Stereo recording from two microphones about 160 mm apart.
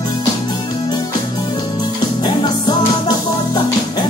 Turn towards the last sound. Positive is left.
turn(degrees=25)  # may be behind; listen again after turning